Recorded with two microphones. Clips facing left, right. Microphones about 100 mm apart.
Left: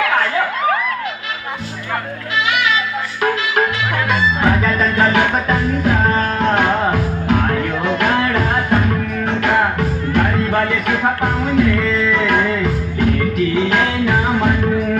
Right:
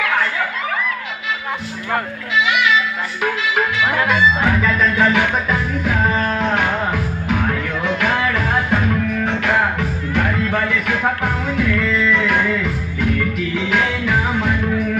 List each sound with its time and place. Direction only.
4.4 s music: 5° left (ahead or behind)
5.1 s music: 15° left (ahead or behind)